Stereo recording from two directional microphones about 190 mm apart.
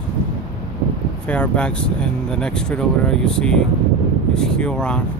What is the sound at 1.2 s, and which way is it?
Speech, 5° left (ahead or behind).